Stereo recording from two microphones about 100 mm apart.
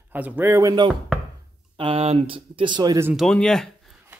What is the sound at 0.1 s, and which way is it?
Speech, 15° right (ahead or behind).